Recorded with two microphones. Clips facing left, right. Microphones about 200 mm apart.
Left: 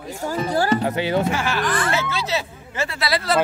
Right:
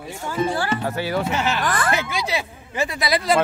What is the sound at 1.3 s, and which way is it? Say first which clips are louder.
Speech: right 1 dB; 20° right (ahead or behind).